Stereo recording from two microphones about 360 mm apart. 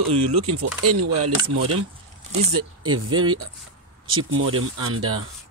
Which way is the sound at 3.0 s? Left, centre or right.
Right.